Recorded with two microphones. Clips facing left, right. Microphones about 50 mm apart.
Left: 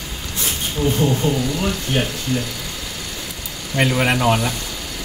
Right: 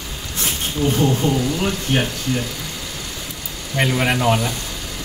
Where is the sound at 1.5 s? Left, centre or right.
Right.